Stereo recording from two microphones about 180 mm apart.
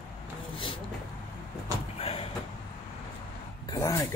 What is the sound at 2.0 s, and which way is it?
Vehicle, 30° left (ahead or behind).